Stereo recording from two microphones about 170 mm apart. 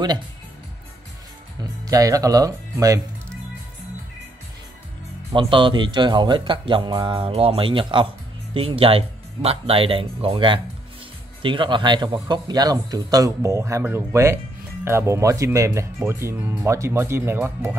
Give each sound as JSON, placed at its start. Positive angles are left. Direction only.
{"t": 1.6, "sound": "speech", "side_deg": -20}
{"t": 5.3, "sound": "speech", "side_deg": -30}